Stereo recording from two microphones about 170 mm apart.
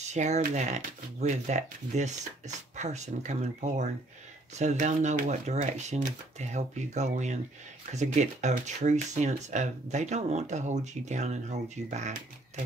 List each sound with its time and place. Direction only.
0.1 s speech: 45° right (ahead or behind)